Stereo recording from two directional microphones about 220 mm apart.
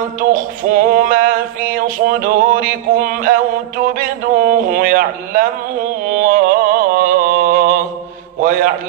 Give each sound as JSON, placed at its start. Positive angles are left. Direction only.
{"t": 0.2, "sound": "male singing", "side_deg": -40}
{"t": 8.4, "sound": "mantra", "side_deg": -40}